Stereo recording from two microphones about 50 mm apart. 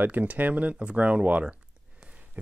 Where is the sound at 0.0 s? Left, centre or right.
Right.